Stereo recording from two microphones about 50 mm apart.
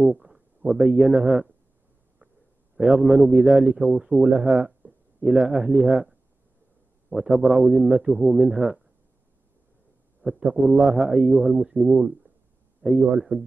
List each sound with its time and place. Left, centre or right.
0.0 s a man's voice: centre
2.8 s a man's voice: centre
10.5 s a man's voice: centre
12.8 s a man's voice: right